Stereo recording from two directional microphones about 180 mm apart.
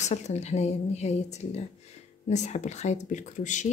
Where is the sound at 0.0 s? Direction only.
40° left (ahead or behind).